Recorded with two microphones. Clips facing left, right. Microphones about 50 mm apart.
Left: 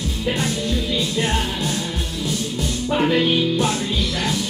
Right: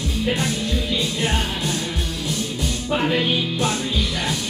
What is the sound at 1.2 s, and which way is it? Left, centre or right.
Music, centre.